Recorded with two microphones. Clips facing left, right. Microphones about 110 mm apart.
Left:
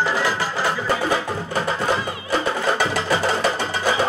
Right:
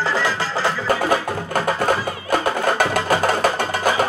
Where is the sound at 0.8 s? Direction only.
50° right (ahead or behind).